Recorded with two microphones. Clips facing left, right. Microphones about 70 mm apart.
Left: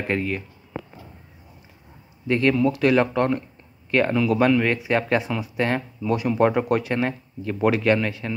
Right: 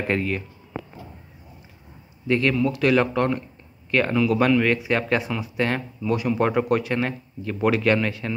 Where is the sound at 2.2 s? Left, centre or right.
Left.